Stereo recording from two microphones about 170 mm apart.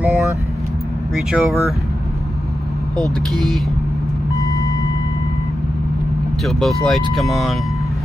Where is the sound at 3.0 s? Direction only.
Centre (ahead or behind).